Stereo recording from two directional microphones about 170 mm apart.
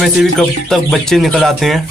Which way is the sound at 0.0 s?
Centre (ahead or behind).